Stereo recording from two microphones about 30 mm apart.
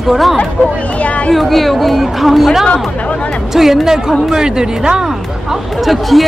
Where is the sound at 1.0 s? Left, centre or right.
Left.